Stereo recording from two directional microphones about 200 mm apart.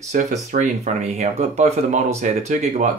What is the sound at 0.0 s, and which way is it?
Speech, 35° right (ahead or behind).